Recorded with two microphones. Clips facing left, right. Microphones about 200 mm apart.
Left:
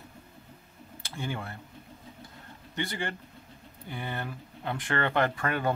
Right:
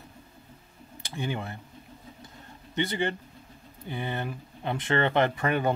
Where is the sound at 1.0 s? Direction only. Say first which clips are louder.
Right 3 dB; 15° right (ahead or behind).